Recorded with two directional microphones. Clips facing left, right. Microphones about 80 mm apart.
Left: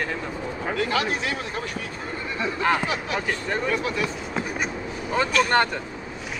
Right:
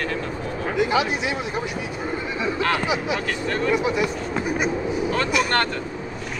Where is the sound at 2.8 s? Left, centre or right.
Centre.